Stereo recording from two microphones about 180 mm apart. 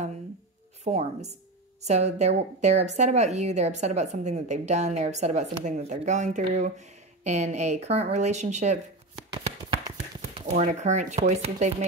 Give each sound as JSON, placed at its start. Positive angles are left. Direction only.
{"t": 0.8, "sound": "a woman's voice", "side_deg": -40}
{"t": 10.4, "sound": "a woman's voice", "side_deg": -40}